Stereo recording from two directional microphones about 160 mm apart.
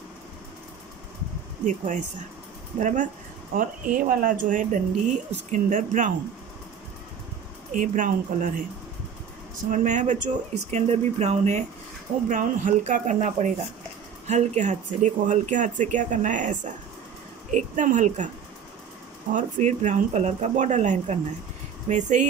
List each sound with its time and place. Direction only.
1.6 s speech: 50° right (ahead or behind)
7.7 s speech: 55° right (ahead or behind)
9.7 s speech: 50° right (ahead or behind)
19.3 s speech: 50° right (ahead or behind)